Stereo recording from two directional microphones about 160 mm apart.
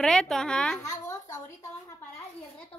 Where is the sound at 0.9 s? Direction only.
20° left (ahead or behind).